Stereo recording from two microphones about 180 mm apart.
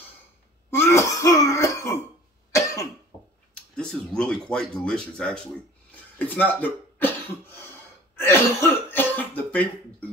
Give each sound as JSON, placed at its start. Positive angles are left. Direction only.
{"t": 0.7, "sound": "throat clearing", "side_deg": 15}
{"t": 2.5, "sound": "cough", "side_deg": 15}
{"t": 3.5, "sound": "speech", "side_deg": 5}